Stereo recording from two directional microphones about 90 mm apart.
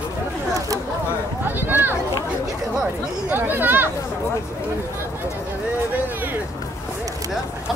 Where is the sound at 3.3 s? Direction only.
20° right (ahead or behind).